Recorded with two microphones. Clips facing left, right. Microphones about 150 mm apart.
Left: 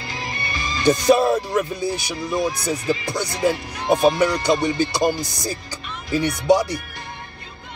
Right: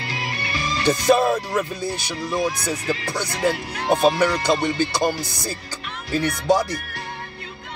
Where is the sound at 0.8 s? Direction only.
15° left (ahead or behind).